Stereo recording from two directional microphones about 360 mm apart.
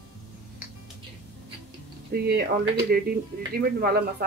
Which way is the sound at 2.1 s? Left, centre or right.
Right.